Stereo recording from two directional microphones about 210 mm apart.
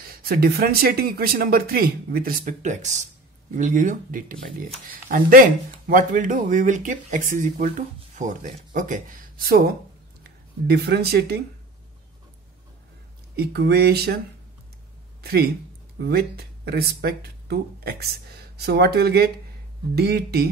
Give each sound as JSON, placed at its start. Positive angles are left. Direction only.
{"t": 0.1, "sound": "speech", "side_deg": -45}
{"t": 13.4, "sound": "speech", "side_deg": -50}
{"t": 15.2, "sound": "speech", "side_deg": -50}